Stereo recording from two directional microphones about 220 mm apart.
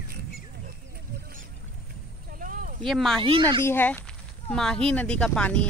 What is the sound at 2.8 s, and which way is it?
Speech, centre (ahead or behind).